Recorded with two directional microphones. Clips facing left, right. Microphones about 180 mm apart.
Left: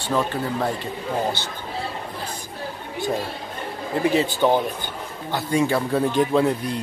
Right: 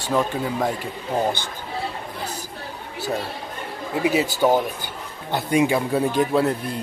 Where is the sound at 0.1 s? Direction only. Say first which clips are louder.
Right 1 dB; 10° right (ahead or behind).